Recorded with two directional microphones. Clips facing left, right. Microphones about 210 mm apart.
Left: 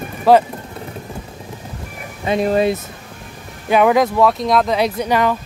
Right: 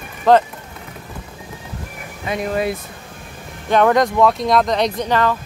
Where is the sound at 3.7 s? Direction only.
5° left (ahead or behind).